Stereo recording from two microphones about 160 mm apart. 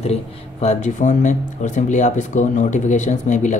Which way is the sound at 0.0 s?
40° left (ahead or behind).